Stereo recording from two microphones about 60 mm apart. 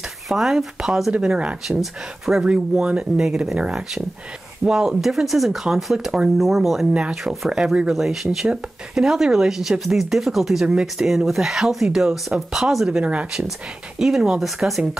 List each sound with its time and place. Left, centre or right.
0.3 s speech: centre
2.4 s speech: centre
6.9 s speech: centre
7.9 s speech: centre
13.0 s speech: right
13.9 s speech: centre